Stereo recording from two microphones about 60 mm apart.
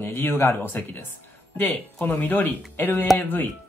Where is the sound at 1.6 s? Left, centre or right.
Left.